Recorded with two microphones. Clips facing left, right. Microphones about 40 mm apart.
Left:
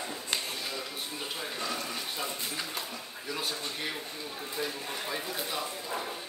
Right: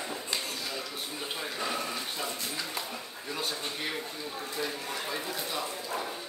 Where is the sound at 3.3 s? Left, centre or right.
Centre.